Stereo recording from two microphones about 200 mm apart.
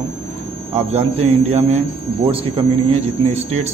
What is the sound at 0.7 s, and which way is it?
Speech, 30° right (ahead or behind).